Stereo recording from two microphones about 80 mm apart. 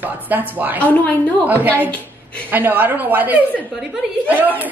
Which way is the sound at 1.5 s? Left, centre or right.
Right.